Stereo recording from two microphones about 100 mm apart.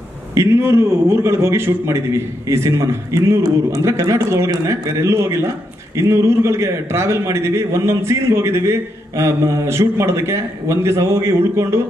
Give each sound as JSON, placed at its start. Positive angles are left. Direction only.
{"t": 0.3, "sound": "a man's voice", "side_deg": -25}